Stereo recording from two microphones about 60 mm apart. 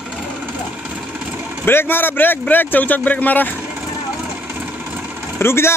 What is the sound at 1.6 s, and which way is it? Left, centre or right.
A man's voice, left.